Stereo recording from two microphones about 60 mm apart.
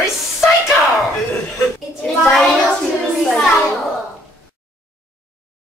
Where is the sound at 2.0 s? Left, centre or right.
Centre.